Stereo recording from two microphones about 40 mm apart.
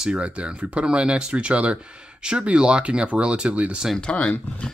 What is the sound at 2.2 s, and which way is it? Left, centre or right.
Speech, right.